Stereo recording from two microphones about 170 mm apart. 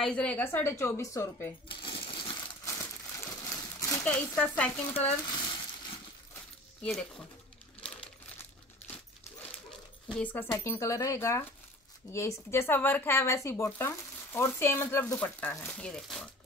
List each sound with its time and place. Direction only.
0.0 s speech: 5° left (ahead or behind)
1.7 s crushing: 30° left (ahead or behind)
2.6 s crumpling: 20° left (ahead or behind)
3.4 s a sound: 20° left (ahead or behind)
4.0 s speech: 5° left (ahead or behind)
6.8 s speech: 5° left (ahead or behind)
7.8 s coin: 5° left (ahead or behind)
10.0 s speech: 10° left (ahead or behind)